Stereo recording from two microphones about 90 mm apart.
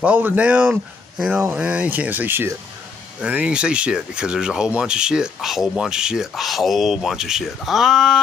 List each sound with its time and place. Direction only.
0.0 s speech: 15° right (ahead or behind); by 8.2 s 5° left (ahead or behind)